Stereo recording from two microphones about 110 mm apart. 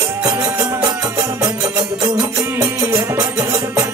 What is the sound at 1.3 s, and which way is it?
Music, 35° right (ahead or behind).